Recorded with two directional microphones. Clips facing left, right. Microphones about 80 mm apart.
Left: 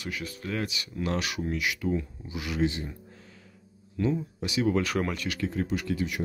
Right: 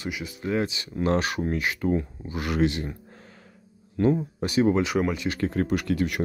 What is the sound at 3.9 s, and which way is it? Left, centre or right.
Speech, right.